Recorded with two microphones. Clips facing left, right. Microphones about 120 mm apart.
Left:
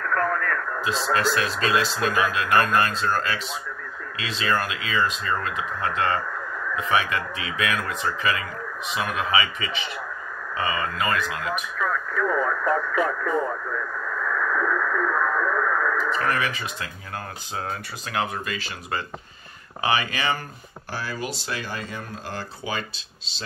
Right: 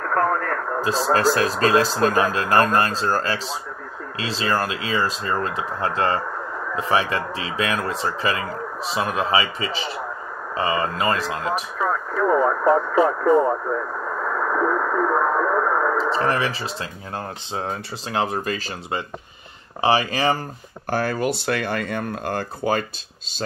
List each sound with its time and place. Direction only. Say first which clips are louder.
0.0 s speech: right 3 dB; 30° right (ahead or behind)
10.5 s radio: right 4 dB; 30° right (ahead or behind)
17.6 s speech: right 3 dB; 30° right (ahead or behind)
19.8 s speech: right 5 dB; 35° right (ahead or behind)
20.9 s speech: right 9 dB; 50° right (ahead or behind)